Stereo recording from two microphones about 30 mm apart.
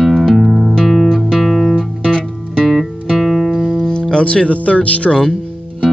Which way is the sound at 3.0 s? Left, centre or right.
Centre.